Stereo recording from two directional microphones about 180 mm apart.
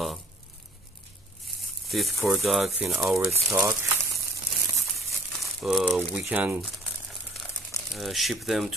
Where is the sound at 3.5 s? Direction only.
15° right (ahead or behind).